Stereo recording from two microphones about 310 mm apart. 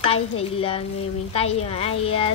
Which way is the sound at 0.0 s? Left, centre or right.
Centre.